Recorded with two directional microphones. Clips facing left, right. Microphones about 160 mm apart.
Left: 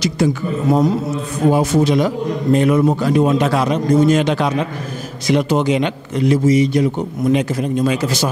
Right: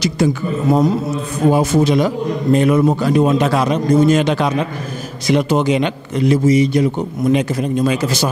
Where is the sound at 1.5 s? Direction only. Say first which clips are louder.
Right 1 dB; 20° right (ahead or behind).